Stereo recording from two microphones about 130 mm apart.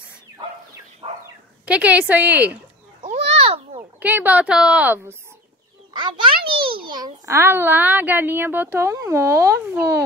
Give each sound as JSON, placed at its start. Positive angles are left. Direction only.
{"t": 1.0, "sound": "dog", "side_deg": -45}
{"t": 1.7, "sound": "a woman's voice", "side_deg": -10}
{"t": 3.0, "sound": "a sound", "side_deg": -60}
{"t": 4.0, "sound": "a woman's voice", "side_deg": -10}
{"t": 5.9, "sound": "a child's voice", "side_deg": -40}
{"t": 7.3, "sound": "speech", "side_deg": -20}